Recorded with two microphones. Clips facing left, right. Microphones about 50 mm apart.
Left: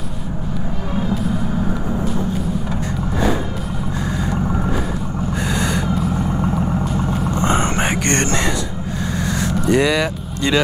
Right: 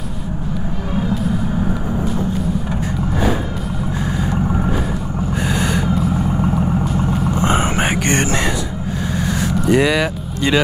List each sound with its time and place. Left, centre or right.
0.9 s vehicle: centre
4.2 s vehicle: centre